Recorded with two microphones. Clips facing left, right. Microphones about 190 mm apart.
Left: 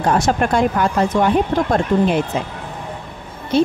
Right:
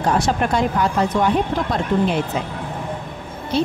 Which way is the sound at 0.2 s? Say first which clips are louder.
Left 3 dB; 50° left (ahead or behind).